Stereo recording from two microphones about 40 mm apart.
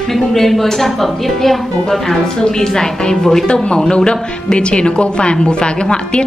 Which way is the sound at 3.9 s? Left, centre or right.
Left.